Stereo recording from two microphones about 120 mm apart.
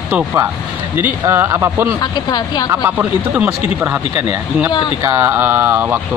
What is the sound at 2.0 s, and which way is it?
Speech, 35° left (ahead or behind).